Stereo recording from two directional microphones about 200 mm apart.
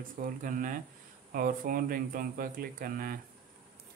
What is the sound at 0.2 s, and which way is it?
A man's voice, 45° right (ahead or behind).